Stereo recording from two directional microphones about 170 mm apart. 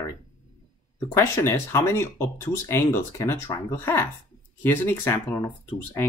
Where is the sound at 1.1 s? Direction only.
15° left (ahead or behind).